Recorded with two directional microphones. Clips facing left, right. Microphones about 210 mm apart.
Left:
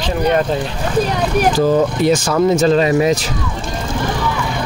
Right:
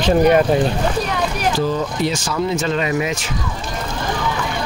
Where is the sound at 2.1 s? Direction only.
50° left (ahead or behind).